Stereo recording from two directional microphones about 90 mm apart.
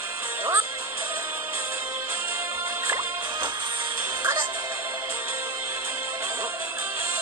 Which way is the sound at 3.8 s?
25° right (ahead or behind).